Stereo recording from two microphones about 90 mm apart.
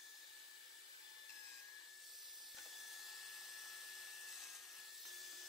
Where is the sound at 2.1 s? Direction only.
Centre (ahead or behind).